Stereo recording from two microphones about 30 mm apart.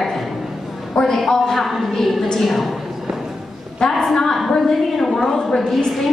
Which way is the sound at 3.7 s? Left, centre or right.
Centre.